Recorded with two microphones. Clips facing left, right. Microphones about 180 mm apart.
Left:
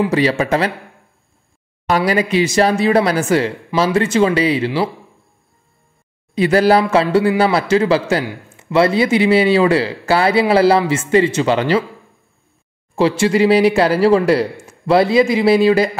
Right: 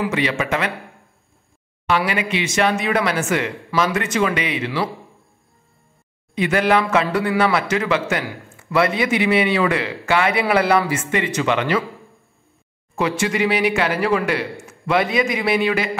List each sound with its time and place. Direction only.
0.0 s speech: 35° left (ahead or behind)
1.9 s speech: 40° left (ahead or behind)
6.3 s speech: 35° left (ahead or behind)
12.9 s speech: 30° left (ahead or behind)